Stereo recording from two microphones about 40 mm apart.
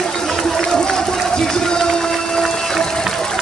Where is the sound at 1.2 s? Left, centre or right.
Centre.